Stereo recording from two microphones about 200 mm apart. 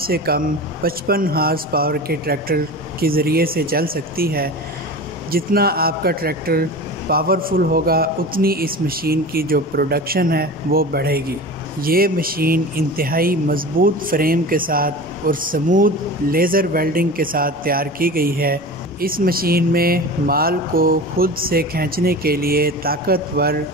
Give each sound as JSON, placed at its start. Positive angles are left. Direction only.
{"t": 0.0, "sound": "speech", "side_deg": -50}